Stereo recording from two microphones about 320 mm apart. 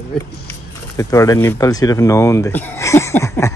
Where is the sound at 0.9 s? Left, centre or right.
Centre.